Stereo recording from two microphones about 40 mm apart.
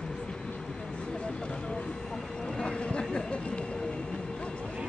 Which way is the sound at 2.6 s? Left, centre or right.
Left.